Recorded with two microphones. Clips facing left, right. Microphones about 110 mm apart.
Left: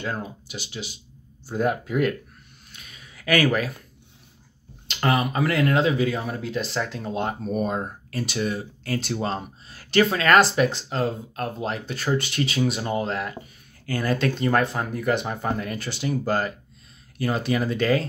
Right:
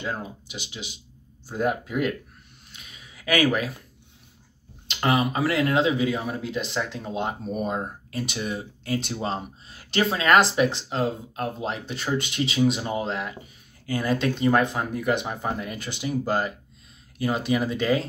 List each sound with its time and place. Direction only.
0.0 s speech: 15° right (ahead or behind)
2.7 s a sound: 15° right (ahead or behind)
3.5 s speech: 15° right (ahead or behind)
4.8 s speech: 20° right (ahead or behind)